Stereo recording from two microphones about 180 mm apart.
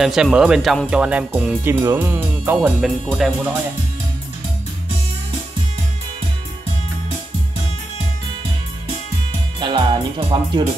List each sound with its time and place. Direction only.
0.0 s speech: 5° right (ahead or behind)
9.6 s music: 25° right (ahead or behind)